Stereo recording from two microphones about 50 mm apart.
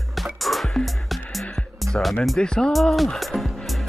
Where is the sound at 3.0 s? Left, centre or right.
Centre.